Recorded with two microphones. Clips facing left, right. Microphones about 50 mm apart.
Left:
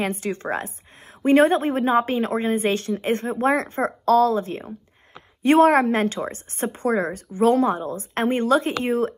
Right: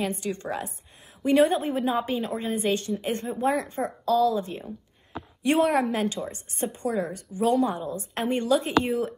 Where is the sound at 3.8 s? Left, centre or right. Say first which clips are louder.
Left 5 dB; left.